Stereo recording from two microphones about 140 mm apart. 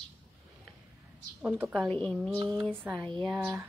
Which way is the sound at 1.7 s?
5° left (ahead or behind).